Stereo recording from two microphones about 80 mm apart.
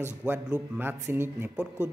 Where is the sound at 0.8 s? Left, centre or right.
Right.